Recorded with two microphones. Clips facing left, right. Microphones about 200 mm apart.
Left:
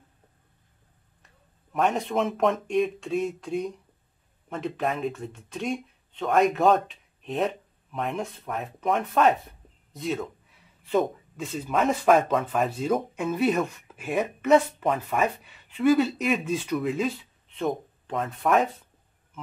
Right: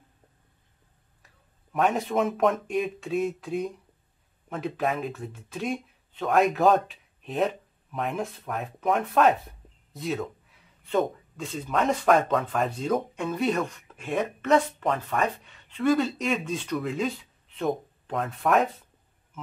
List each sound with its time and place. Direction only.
1.7 s speech: centre (ahead or behind)